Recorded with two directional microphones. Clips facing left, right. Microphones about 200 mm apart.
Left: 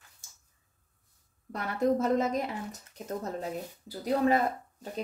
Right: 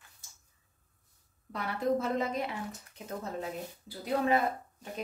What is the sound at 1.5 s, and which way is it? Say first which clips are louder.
Speech: left 3 dB; 40° left (ahead or behind).